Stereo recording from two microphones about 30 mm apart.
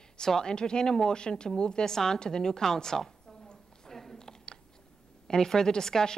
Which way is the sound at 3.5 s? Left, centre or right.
Left.